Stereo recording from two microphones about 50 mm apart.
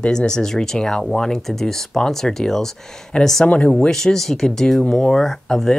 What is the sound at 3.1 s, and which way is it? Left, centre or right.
Speech, centre.